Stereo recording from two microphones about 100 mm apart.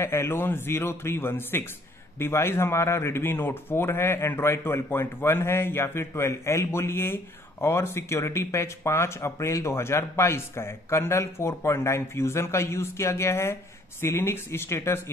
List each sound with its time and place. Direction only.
0.0 s speech: 25° left (ahead or behind)